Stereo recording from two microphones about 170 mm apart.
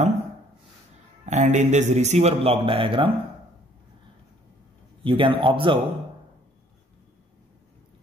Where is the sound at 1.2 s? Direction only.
45° right (ahead or behind).